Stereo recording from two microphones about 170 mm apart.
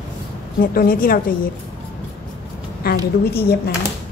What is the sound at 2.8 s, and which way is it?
Speech, 65° left (ahead or behind).